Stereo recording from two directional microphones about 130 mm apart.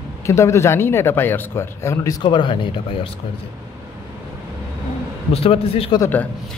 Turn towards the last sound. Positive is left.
turn(degrees=15)  # may be behind; listen again after turning